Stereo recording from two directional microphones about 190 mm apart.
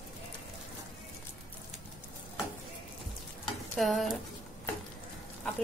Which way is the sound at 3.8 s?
Centre (ahead or behind).